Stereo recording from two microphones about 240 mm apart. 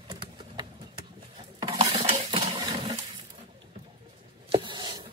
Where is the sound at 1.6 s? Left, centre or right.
Centre.